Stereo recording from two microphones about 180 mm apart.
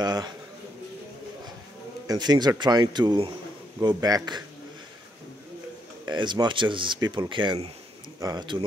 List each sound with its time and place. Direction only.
0.0 s speech: 20° right (ahead or behind)
2.0 s speech: 25° right (ahead or behind)
6.0 s speech: 25° right (ahead or behind)